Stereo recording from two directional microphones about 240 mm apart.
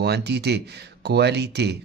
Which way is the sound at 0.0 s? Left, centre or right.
Right.